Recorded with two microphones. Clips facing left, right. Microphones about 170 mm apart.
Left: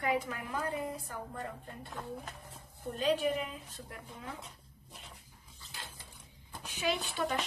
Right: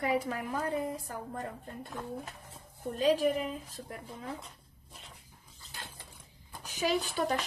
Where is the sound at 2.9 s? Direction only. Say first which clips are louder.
Right 4 dB; 40° right (ahead or behind).